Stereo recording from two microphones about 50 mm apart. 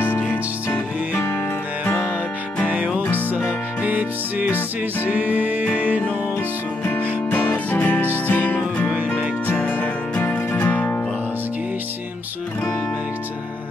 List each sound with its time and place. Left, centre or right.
1.1 s music: left
3.0 s music: left
3.8 s music: right
7.2 s music: left
8.9 s music: right
9.6 s music: left